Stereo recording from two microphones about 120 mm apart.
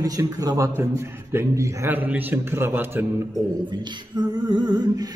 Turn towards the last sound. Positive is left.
turn(degrees=-35)  # may be behind; listen again after turning